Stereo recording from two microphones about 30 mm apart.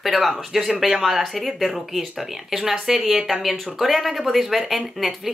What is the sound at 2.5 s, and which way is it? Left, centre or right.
Speech, centre.